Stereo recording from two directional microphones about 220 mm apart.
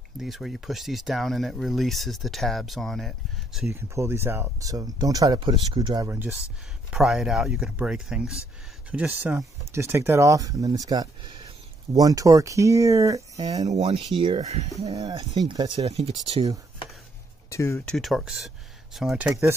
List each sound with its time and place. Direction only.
0.2 s speech: centre (ahead or behind)
3.7 s speech: 10° right (ahead or behind)
13.7 s speech: 30° right (ahead or behind)
14.9 s speech: 15° right (ahead or behind)
17.5 s speech: 15° left (ahead or behind)
17.9 s speech: centre (ahead or behind)